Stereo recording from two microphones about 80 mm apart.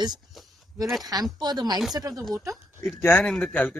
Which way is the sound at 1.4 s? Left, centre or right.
Right.